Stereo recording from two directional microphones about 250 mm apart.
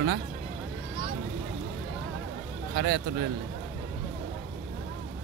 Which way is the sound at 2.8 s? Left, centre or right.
Right.